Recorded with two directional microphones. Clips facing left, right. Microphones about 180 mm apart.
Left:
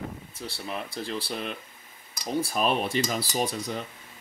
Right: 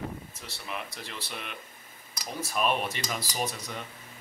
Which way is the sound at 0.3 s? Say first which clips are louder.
Left 4 dB; 30° left (ahead or behind).